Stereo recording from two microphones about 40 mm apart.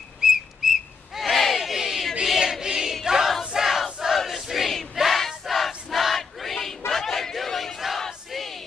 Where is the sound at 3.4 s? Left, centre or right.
Centre.